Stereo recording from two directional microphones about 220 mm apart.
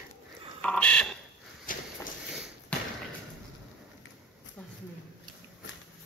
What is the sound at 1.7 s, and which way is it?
Walk, 40° left (ahead or behind).